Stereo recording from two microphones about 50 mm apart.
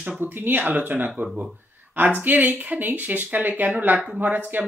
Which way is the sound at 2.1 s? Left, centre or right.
Right.